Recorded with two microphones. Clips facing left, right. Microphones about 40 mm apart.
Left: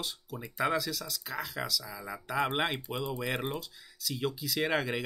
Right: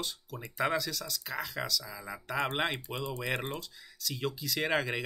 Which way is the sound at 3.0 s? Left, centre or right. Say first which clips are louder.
Left 3 dB; centre.